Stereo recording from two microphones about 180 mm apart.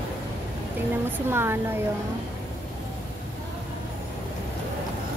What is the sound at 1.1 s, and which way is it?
Speech, 15° right (ahead or behind).